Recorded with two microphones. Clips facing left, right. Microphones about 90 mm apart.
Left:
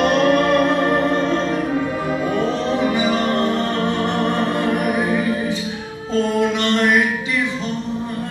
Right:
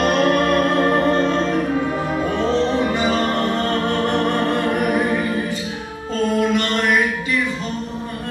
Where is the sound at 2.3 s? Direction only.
10° left (ahead or behind).